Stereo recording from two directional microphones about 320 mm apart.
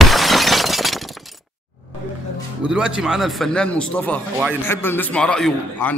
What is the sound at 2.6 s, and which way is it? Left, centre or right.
Speech, centre.